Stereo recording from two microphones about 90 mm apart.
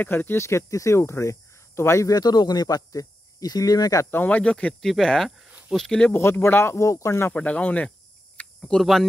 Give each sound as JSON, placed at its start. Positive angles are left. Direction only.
{"t": 0.0, "sound": "speech", "side_deg": 20}
{"t": 4.1, "sound": "speech", "side_deg": 20}
{"t": 6.1, "sound": "speech", "side_deg": 25}
{"t": 7.3, "sound": "speech", "side_deg": 15}
{"t": 8.4, "sound": "a sound", "side_deg": 10}